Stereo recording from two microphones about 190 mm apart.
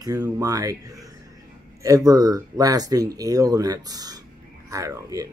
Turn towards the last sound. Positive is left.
turn(degrees=-15)  # may be behind; listen again after turning